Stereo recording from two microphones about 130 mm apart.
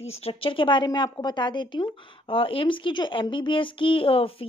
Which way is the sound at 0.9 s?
25° left (ahead or behind).